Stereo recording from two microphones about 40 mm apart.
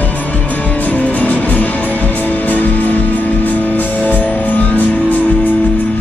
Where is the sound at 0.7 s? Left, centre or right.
Left.